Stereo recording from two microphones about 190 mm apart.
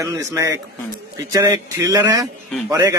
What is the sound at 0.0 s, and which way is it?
A man's voice, 15° right (ahead or behind).